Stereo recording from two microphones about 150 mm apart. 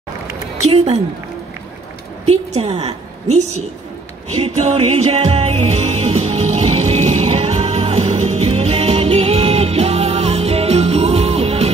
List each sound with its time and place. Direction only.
2.2 s a woman's voice: 45° right (ahead or behind)
4.3 s music: 40° right (ahead or behind)